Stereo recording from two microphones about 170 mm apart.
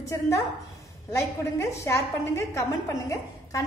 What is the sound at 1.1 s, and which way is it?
A woman's voice, 15° left (ahead or behind).